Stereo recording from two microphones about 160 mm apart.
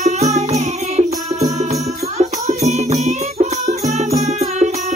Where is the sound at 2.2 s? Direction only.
45° right (ahead or behind).